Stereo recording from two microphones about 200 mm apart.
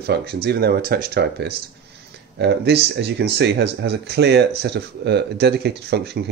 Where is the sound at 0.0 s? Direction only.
55° right (ahead or behind).